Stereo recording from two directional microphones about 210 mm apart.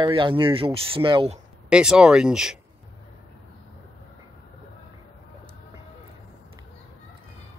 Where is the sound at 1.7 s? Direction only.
5° right (ahead or behind).